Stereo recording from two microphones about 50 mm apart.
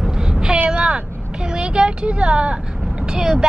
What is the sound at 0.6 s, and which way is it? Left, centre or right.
Vehicle, right.